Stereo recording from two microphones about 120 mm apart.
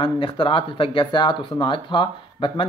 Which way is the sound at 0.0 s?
45° left (ahead or behind).